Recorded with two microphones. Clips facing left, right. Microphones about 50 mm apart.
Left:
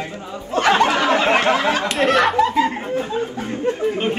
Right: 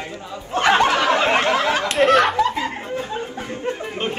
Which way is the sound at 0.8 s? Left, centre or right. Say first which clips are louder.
Even; left.